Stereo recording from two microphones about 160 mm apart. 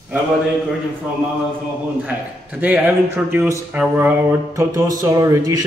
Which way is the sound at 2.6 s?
10° right (ahead or behind).